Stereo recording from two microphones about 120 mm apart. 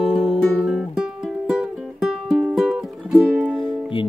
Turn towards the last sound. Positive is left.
turn(degrees=45)  # may be behind; listen again after turning